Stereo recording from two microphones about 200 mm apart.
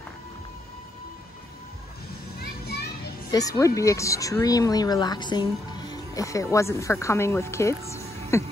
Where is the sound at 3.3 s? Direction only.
15° left (ahead or behind).